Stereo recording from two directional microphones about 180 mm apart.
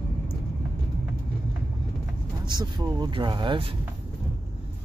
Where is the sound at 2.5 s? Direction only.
25° right (ahead or behind).